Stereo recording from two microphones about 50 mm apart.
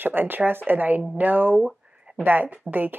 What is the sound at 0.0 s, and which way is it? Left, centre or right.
Speech, right.